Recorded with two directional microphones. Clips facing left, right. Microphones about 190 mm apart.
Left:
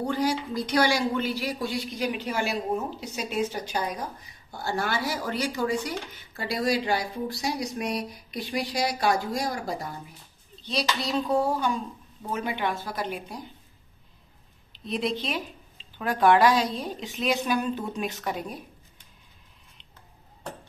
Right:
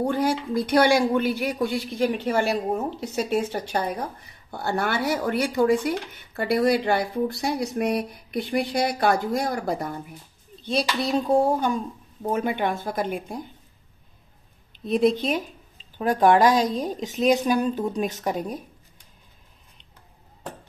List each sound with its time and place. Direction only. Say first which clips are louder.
0.0 s speech: right 3 dB; 55° right (ahead or behind)
3.7 s speech: right 4 dB; 60° right (ahead or behind)
14.9 s speech: right 8 dB; 50° right (ahead or behind)